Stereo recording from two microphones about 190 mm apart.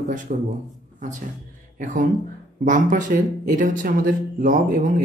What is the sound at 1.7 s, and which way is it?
Speech, 45° right (ahead or behind).